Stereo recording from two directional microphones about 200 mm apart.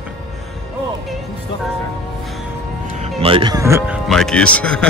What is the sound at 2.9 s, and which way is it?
Music, 35° right (ahead or behind).